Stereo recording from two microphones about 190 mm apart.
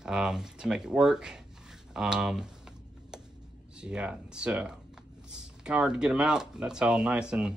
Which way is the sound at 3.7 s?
5° right (ahead or behind).